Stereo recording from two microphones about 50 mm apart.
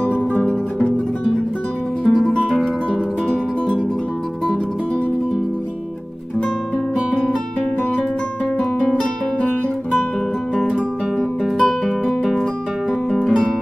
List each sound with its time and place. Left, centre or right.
2.0 s music: centre
8.8 s music: centre
11.5 s music: centre
12.2 s music: centre
13.3 s music: centre